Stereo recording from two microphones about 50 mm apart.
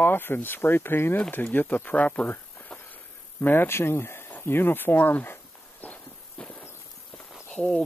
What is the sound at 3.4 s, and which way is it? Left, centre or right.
Speech, left.